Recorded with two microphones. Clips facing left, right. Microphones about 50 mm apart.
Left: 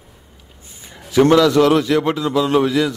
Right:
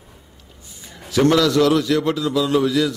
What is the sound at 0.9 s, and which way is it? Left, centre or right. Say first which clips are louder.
A man's voice: left 4 dB; left.